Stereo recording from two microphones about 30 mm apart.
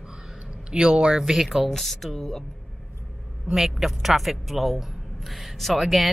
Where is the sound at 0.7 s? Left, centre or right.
Right.